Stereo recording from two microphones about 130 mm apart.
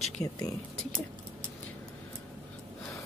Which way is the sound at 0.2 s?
25° left (ahead or behind).